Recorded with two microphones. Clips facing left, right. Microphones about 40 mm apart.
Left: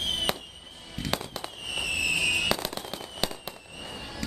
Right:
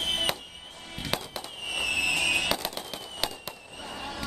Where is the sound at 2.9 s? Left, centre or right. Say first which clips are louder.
Left 1 dB; centre.